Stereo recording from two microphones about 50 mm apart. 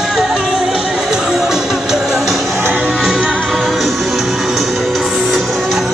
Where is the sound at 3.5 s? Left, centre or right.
Centre.